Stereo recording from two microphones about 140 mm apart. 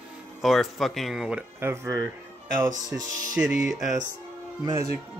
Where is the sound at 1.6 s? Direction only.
15° right (ahead or behind).